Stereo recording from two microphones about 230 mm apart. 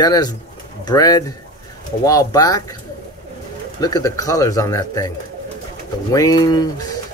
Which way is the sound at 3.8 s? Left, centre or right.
Centre.